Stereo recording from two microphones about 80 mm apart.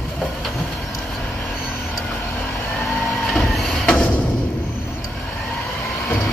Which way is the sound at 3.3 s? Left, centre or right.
Centre.